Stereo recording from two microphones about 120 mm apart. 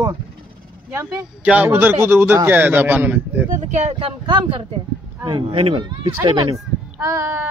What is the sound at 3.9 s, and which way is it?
Speech, 45° right (ahead or behind).